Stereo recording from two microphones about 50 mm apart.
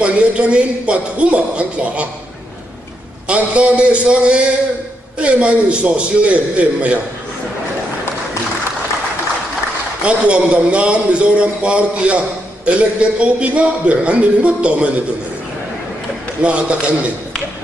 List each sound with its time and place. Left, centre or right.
0.0 s a man's voice: right
3.3 s a man's voice: right
10.0 s a man's voice: right
16.4 s a man's voice: right